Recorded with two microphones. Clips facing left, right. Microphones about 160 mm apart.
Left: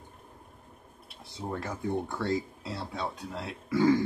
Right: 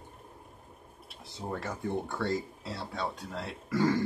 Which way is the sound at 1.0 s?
Centre (ahead or behind).